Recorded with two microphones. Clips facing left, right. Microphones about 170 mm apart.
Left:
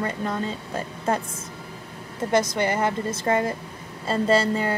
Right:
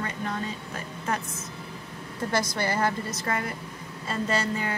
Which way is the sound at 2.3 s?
20° left (ahead or behind).